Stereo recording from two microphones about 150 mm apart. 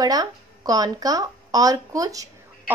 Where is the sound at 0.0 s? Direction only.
25° right (ahead or behind).